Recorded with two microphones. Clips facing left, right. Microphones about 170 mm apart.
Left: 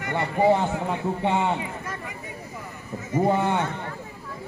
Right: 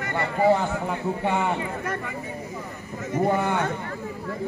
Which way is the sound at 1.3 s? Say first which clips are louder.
Left 1 dB; 25° left (ahead or behind).